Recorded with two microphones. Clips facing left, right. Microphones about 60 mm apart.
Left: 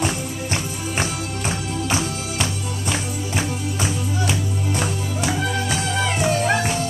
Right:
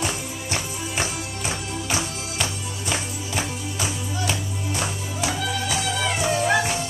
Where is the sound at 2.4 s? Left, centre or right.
Centre.